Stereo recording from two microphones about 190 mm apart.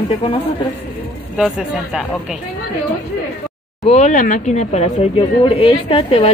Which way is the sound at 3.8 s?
35° left (ahead or behind).